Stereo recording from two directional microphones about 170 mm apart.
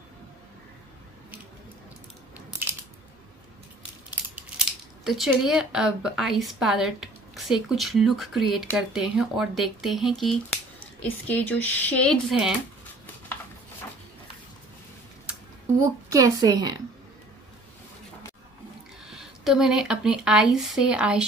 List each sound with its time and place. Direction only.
5.0 s speech: centre (ahead or behind)
15.8 s a woman's voice: 20° right (ahead or behind)
19.0 s speech: 5° right (ahead or behind)